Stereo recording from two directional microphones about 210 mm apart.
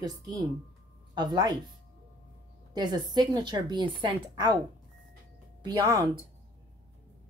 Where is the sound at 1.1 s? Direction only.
20° right (ahead or behind).